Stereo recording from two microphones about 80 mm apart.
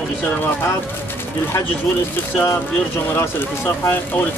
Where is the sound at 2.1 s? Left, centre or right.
Left.